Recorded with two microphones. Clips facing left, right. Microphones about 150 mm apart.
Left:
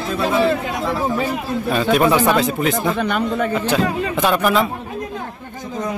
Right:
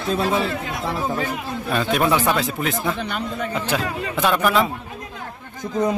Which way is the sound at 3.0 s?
60° left (ahead or behind).